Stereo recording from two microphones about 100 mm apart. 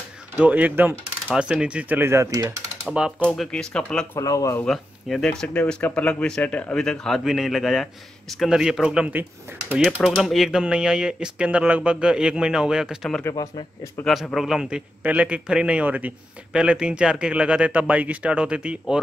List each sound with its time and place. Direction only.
0.4 s speech: 15° right (ahead or behind)
3.2 s speech: 10° left (ahead or behind)
4.2 s speech: 35° left (ahead or behind)
4.6 s speech: 5° left (ahead or behind)
13.3 s speech: 45° left (ahead or behind)
14.0 s speech: centre (ahead or behind)